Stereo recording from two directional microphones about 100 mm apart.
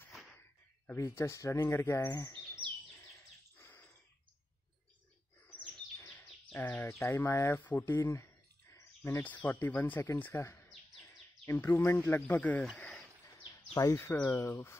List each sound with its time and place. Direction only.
0.1 s a sound: centre (ahead or behind)
0.4 s speech: 25° left (ahead or behind)
2.3 s chirp: 30° left (ahead or behind)
6.5 s speech: 20° left (ahead or behind)
7.9 s a sound: 25° left (ahead or behind)
9.2 s speech: 15° left (ahead or behind)
11.0 s bird: 30° left (ahead or behind)
11.6 s speech: 25° left (ahead or behind)
12.4 s speech: 15° left (ahead or behind)
12.7 s a sound: 10° left (ahead or behind)
13.6 s a sound: 35° left (ahead or behind)
13.9 s speech: 25° left (ahead or behind)